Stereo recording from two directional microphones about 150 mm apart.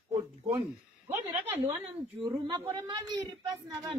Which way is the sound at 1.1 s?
15° right (ahead or behind).